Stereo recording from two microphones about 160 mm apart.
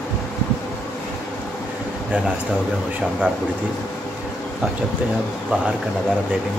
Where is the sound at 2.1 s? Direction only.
5° right (ahead or behind).